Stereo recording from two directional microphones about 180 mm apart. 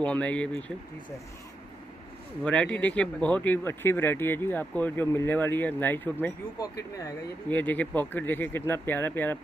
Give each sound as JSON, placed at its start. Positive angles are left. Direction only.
{"t": 0.0, "sound": "speech", "side_deg": 5}
{"t": 2.4, "sound": "speech", "side_deg": 5}
{"t": 7.4, "sound": "speech", "side_deg": 10}